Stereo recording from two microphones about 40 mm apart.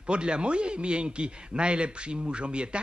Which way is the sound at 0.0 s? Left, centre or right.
Right.